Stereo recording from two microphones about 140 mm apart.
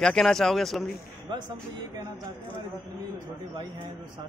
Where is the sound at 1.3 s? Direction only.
35° right (ahead or behind).